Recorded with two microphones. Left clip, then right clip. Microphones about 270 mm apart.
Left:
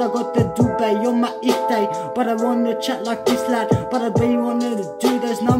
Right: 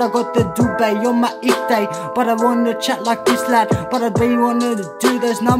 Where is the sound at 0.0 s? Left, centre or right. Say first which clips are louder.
Right 3 dB; centre.